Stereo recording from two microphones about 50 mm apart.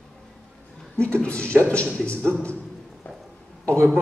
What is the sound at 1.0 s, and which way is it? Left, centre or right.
A man's voice, left.